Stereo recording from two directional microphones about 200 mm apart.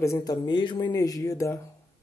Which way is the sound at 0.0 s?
15° left (ahead or behind).